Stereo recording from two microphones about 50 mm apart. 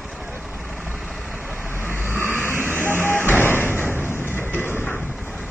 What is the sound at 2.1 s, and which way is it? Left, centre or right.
Vehicle, left.